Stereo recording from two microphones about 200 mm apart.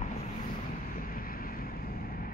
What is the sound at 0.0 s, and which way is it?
Vehicle, 45° left (ahead or behind).